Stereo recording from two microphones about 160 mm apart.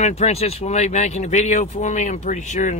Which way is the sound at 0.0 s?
40° left (ahead or behind).